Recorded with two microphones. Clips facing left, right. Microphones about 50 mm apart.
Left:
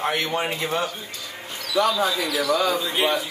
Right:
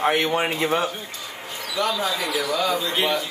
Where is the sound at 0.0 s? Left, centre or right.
Centre.